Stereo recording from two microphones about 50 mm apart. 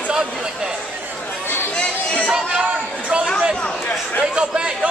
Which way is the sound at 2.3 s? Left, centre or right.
Centre.